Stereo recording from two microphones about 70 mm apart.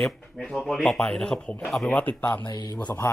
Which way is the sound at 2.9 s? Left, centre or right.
Left.